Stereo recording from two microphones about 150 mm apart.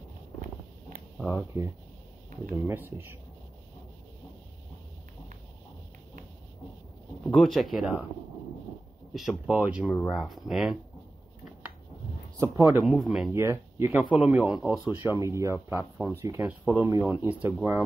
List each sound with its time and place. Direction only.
0.4 s a sound: 70° right (ahead or behind)
1.3 s speech: 20° right (ahead or behind)
7.2 s speech: centre (ahead or behind)
9.1 s speech: centre (ahead or behind)
12.4 s speech: 20° right (ahead or behind)
12.8 s speech: centre (ahead or behind)
13.3 s speech: 15° right (ahead or behind)
14.1 s speech: 5° right (ahead or behind)
15.0 s speech: 20° right (ahead or behind)